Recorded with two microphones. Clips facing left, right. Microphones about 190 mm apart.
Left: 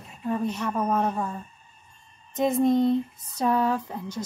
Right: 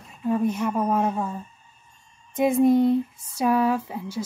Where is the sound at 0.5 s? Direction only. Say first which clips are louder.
Right 2 dB; 10° right (ahead or behind).